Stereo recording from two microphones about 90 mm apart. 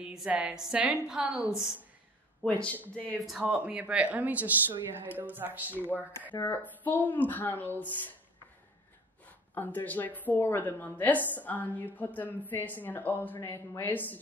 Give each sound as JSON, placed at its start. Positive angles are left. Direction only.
{"t": 0.0, "sound": "a woman's voice", "side_deg": -10}
{"t": 2.4, "sound": "speech", "side_deg": 15}
{"t": 3.4, "sound": "a woman's voice", "side_deg": -15}
{"t": 5.9, "sound": "a woman's voice", "side_deg": 20}
{"t": 9.5, "sound": "a woman's voice", "side_deg": 20}